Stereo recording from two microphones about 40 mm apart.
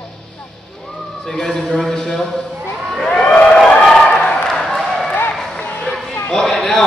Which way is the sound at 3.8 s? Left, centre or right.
Centre.